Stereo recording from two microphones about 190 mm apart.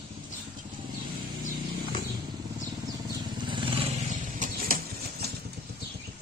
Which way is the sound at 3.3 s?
25° right (ahead or behind).